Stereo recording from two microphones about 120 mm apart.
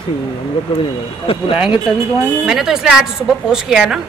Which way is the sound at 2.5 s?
5° right (ahead or behind).